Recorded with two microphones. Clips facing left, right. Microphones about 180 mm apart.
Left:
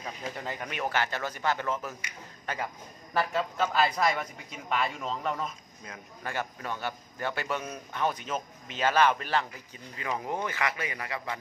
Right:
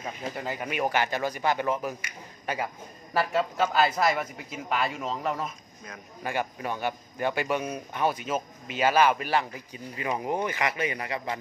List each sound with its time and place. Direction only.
0.0 s a man's voice: 5° right (ahead or behind); by 11.3 s 20° right (ahead or behind)